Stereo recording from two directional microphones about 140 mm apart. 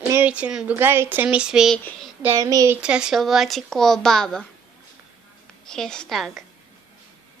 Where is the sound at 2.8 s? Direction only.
5° right (ahead or behind).